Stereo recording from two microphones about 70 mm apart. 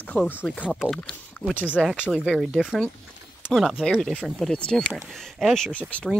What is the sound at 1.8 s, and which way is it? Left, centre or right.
Speech, centre.